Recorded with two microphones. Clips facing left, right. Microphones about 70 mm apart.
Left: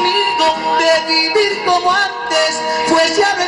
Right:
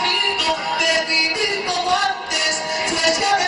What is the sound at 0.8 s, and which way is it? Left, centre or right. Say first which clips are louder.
Music: left 7 dB; left.